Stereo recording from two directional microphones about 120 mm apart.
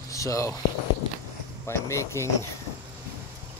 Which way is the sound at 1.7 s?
25° left (ahead or behind).